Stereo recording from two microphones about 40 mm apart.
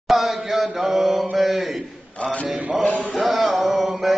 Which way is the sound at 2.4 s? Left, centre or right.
Right.